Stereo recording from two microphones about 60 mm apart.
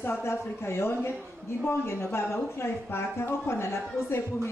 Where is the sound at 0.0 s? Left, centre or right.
Left.